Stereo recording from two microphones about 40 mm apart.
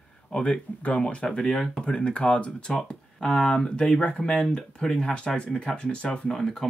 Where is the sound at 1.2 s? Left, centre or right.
Centre.